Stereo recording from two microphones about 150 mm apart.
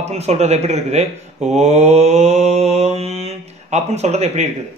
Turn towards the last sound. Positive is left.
turn(degrees=-50)  # may be behind; listen again after turning